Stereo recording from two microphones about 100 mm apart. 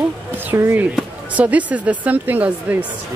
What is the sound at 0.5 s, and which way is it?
Speech, 25° right (ahead or behind).